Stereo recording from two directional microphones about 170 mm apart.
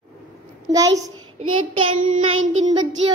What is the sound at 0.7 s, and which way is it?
Speech, 20° right (ahead or behind).